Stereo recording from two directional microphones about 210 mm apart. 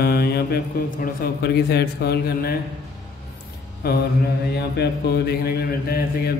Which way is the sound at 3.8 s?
50° left (ahead or behind).